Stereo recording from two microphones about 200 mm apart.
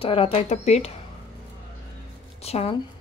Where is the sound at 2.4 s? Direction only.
30° left (ahead or behind).